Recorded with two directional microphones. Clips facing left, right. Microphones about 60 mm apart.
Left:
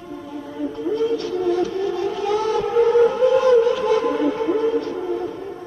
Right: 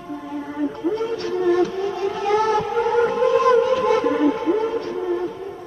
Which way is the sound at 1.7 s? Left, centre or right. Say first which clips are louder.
Left 1 dB; right.